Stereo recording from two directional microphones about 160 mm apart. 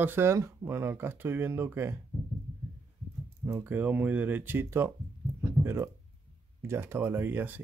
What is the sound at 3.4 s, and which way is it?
Speech, 15° right (ahead or behind).